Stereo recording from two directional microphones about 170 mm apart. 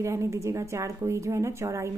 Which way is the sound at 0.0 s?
15° right (ahead or behind).